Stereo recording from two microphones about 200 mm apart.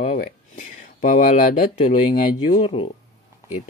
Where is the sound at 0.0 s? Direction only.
45° left (ahead or behind).